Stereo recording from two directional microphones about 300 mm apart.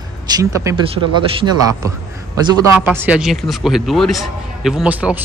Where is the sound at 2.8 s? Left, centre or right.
Centre.